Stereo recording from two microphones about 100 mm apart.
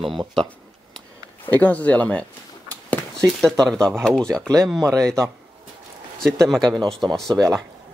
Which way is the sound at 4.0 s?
5° left (ahead or behind).